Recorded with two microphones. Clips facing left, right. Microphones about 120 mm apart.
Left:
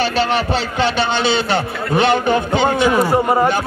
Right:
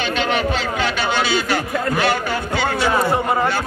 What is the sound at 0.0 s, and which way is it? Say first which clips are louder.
A man's voice: left 3 dB; 35° left (ahead or behind).